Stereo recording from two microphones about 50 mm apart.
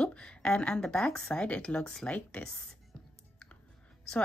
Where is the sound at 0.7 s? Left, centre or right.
Centre.